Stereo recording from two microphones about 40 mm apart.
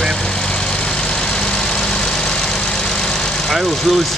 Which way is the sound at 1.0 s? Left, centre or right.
Centre.